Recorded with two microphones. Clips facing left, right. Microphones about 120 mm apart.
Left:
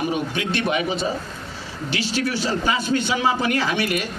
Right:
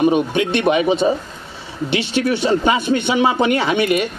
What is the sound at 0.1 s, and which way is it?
Speech, 20° right (ahead or behind).